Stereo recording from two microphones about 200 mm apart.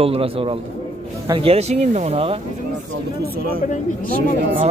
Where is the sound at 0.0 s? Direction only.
30° right (ahead or behind).